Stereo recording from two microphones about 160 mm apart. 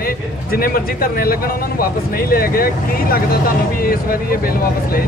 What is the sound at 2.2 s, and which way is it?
Speech, 65° left (ahead or behind).